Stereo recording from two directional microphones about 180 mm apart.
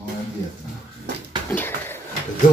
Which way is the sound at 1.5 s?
10° left (ahead or behind).